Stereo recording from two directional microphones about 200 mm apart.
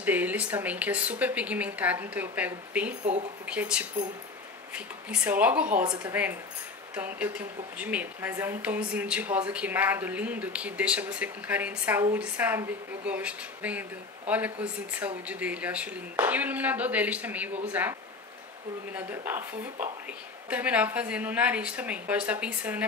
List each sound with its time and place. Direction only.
0.0 s a woman's voice: 10° right (ahead or behind)
18.9 s a woman's voice: 10° right (ahead or behind)
20.4 s a woman's voice: 5° right (ahead or behind)